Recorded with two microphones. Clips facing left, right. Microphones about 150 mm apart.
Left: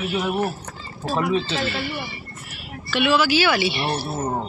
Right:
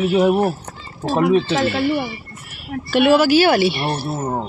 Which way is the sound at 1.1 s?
55° right (ahead or behind).